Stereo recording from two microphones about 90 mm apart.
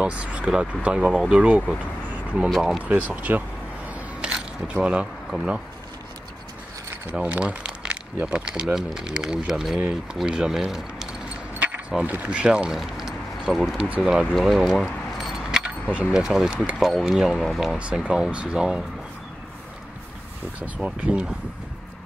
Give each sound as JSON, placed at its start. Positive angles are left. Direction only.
{"t": 0.0, "sound": "speech", "side_deg": -15}
{"t": 2.5, "sound": "speech", "side_deg": 0}
{"t": 2.8, "sound": "speech", "side_deg": -15}
{"t": 3.9, "sound": "single-lens reflex camera", "side_deg": -10}
{"t": 4.8, "sound": "speech", "side_deg": -10}
{"t": 7.1, "sound": "speech", "side_deg": -15}
{"t": 11.9, "sound": "speech", "side_deg": -15}
{"t": 13.8, "sound": "speech", "side_deg": -15}
{"t": 14.3, "sound": "keys jangling", "side_deg": 0}
{"t": 15.9, "sound": "speech", "side_deg": -10}
{"t": 17.7, "sound": "speech", "side_deg": -15}
{"t": 20.5, "sound": "speech", "side_deg": -15}